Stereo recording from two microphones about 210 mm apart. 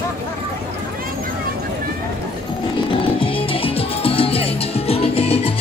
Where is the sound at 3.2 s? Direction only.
25° left (ahead or behind).